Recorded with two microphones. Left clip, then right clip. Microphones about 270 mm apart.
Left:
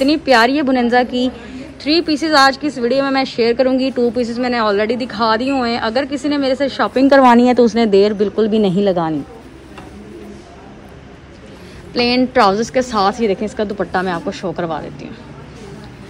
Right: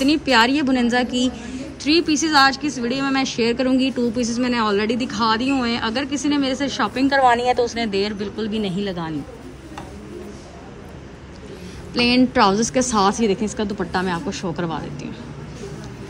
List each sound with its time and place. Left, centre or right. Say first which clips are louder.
0.0 s speech: left 4 dB; centre
11.9 s speech: left 3 dB; centre